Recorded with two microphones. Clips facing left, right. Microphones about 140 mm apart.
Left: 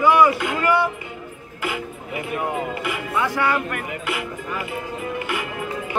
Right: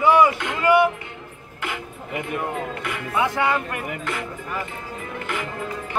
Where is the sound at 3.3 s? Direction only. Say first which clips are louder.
Left 1 dB; 20° right (ahead or behind).